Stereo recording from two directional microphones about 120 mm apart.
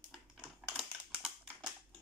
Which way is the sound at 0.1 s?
Centre (ahead or behind).